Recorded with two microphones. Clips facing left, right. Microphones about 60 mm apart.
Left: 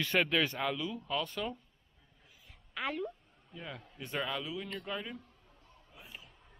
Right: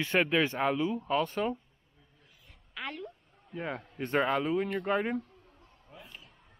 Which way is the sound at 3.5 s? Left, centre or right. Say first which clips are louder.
Right 9 dB; right.